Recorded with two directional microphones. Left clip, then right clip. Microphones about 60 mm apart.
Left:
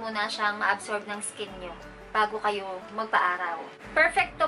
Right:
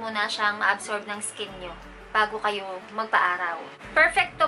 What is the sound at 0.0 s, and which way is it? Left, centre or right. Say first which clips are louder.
A woman's voice: right 3 dB; centre.